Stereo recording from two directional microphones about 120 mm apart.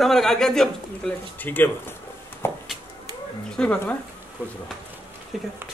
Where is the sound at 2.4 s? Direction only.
20° left (ahead or behind).